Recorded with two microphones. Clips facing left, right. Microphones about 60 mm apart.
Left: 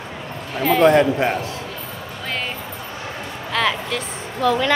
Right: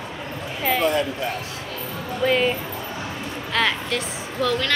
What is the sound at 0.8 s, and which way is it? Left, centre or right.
Speech, left.